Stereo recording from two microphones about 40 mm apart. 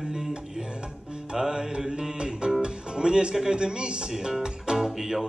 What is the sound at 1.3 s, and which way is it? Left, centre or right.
Music, centre.